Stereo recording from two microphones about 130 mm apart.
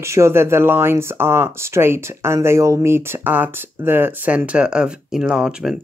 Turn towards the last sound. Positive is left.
turn(degrees=-5)  # may be behind; listen again after turning